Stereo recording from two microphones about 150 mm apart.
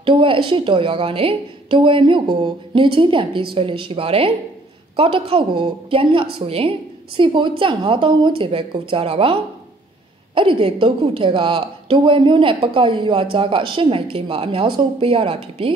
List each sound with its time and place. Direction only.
0.0 s a woman's voice: 35° right (ahead or behind)